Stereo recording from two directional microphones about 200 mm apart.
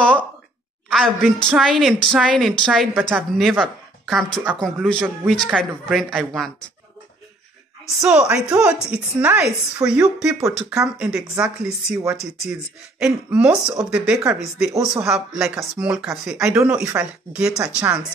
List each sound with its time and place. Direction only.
0.0 s a sound: 5° left (ahead or behind)
0.8 s speech: centre (ahead or behind)
2.9 s speech: 10° right (ahead or behind)
8.0 s speech: 5° right (ahead or behind)
10.4 s speech: 15° right (ahead or behind)